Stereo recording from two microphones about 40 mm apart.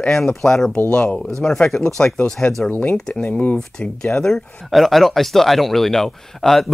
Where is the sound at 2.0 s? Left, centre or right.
Left.